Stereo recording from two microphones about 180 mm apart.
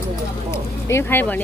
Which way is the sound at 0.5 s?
15° left (ahead or behind).